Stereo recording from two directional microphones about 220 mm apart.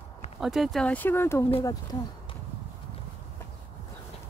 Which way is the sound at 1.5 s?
25° left (ahead or behind).